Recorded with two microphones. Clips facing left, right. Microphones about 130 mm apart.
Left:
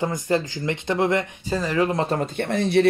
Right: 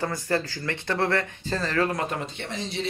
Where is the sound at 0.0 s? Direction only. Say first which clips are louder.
Left 4 dB; 20° left (ahead or behind).